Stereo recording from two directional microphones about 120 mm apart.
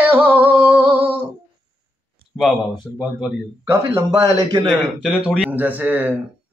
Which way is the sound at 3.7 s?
25° right (ahead or behind).